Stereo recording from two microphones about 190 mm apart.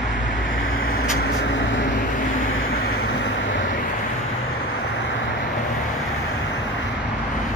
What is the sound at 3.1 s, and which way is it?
Vehicle, 65° left (ahead or behind).